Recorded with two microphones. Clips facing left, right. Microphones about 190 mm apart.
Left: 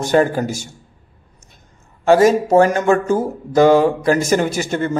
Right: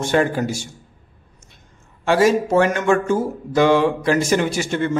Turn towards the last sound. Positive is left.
turn(degrees=40)  # may be behind; listen again after turning